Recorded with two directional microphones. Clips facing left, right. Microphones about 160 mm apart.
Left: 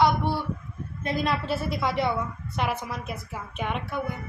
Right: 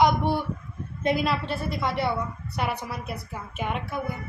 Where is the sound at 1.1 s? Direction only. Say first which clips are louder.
Even; centre (ahead or behind).